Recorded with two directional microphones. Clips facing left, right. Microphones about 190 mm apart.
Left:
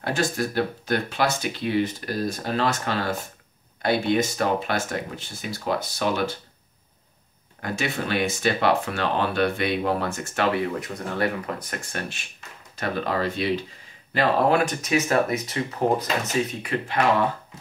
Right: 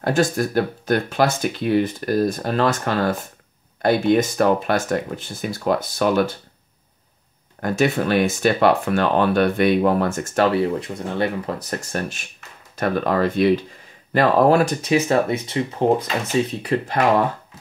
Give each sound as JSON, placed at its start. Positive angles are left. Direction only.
{"t": 0.0, "sound": "speech", "side_deg": -45}
{"t": 7.6, "sound": "speech", "side_deg": -50}
{"t": 14.1, "sound": "speech", "side_deg": -40}